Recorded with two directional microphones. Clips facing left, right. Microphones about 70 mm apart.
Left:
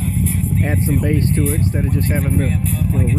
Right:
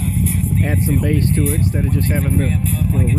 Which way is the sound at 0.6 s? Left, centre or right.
Left.